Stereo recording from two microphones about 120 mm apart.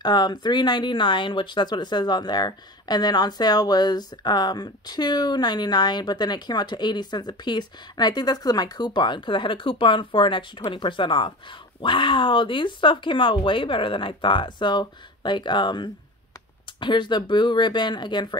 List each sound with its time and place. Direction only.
0.0 s speech: 35° left (ahead or behind)